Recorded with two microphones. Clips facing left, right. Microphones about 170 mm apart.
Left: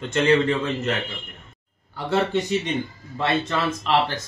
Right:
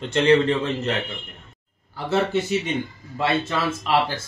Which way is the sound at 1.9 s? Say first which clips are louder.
Even; 5° right (ahead or behind).